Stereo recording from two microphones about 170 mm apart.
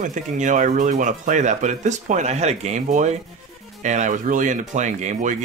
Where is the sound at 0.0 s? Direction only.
45° right (ahead or behind).